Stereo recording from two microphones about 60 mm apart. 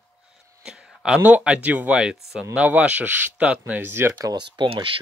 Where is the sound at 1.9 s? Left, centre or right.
Centre.